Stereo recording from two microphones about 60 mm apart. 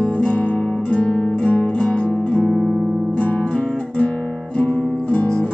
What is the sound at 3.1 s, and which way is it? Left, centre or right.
Guitar, left.